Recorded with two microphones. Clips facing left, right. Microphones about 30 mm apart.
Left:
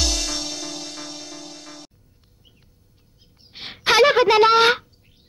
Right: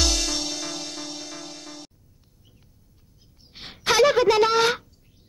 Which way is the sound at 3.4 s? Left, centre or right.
Left.